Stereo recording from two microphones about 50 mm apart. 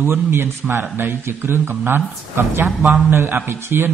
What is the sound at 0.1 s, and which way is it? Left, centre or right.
A man's voice, right.